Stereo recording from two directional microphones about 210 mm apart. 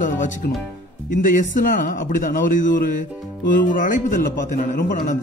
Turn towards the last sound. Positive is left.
turn(degrees=40)  # may be behind; listen again after turning